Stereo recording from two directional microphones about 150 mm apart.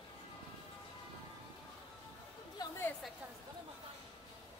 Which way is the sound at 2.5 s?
20° left (ahead or behind).